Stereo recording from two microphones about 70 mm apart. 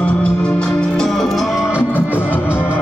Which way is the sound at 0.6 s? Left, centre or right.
Centre.